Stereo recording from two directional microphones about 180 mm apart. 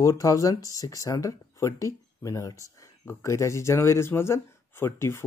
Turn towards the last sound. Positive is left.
turn(degrees=15)  # may be behind; listen again after turning